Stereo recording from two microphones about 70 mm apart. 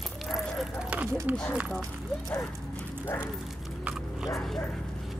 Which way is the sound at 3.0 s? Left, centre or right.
Left.